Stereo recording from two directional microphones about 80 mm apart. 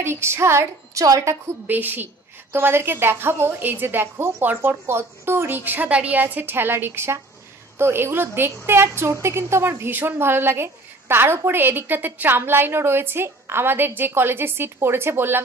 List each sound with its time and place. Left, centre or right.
0.0 s a woman's voice: right
1.7 s a woman's voice: right